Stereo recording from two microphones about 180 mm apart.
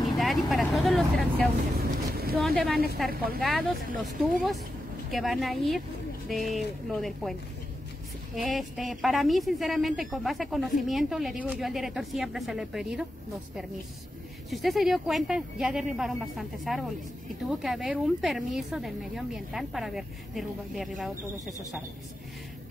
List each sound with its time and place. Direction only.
0.0 s a woman's voice: centre (ahead or behind)
3.1 s speech: 55° right (ahead or behind)
3.4 s a woman's voice: centre (ahead or behind)
8.5 s a woman's voice: centre (ahead or behind)
14.5 s a woman's voice: centre (ahead or behind)